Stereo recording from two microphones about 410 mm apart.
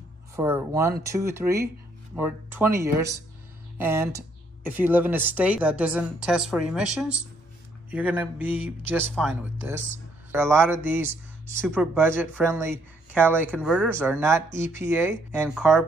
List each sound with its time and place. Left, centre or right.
0.4 s speech: centre